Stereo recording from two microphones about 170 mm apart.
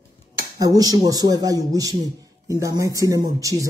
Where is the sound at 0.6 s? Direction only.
20° right (ahead or behind).